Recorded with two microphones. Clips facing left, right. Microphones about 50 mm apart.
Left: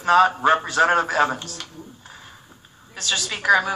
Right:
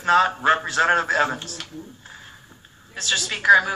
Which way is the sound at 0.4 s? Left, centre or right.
Centre.